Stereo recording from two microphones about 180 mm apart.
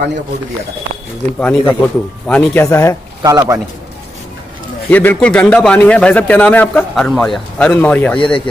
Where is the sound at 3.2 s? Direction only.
20° right (ahead or behind).